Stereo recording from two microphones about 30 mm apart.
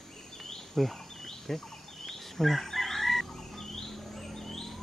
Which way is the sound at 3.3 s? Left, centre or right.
Centre.